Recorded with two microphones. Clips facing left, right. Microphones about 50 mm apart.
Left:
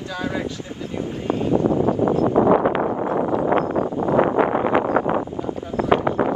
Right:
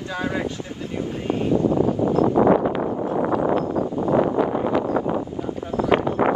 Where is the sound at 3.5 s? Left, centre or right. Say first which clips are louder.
Left 2 dB; left.